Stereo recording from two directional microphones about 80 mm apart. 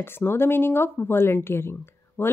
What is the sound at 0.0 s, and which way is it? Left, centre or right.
Speech, left.